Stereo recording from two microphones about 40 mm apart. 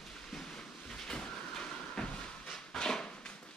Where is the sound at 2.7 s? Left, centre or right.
Centre.